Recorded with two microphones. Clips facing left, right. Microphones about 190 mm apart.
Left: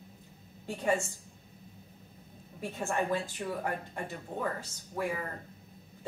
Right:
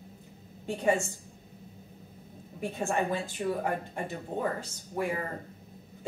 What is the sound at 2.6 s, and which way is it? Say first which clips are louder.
A woman's voice: right 3 dB; 20° right (ahead or behind).